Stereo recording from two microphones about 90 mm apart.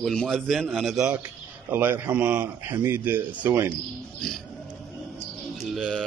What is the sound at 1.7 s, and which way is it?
A man's voice, 20° right (ahead or behind).